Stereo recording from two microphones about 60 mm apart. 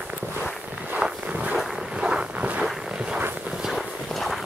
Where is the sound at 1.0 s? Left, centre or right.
Centre.